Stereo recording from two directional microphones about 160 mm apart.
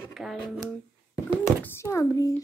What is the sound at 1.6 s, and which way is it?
Speech, 15° left (ahead or behind).